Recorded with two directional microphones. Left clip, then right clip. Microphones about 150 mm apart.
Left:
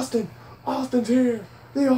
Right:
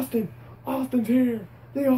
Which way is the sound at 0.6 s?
5° right (ahead or behind).